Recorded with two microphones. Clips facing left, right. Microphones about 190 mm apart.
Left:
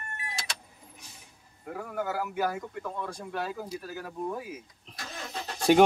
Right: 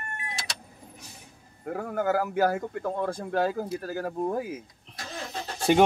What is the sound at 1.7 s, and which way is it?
Speech, 50° right (ahead or behind).